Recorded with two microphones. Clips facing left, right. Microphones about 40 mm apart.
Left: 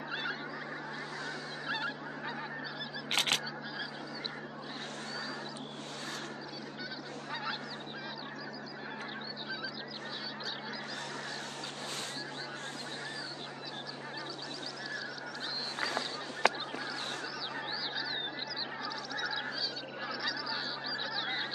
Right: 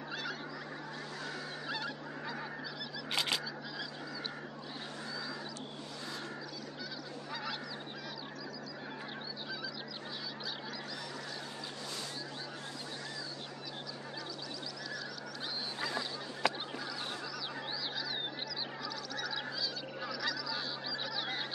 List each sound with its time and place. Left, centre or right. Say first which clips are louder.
0.1 s fowl: left 3 dB; left
1.7 s goose: left 4 dB; left
3.1 s single-lens reflex camera: left 3 dB; left
15.8 s honk: left 3 dB; left
17.9 s frog: left 2 dB; centre
19.1 s goose: left 3 dB; centre
20.0 s honk: left 1 dB; centre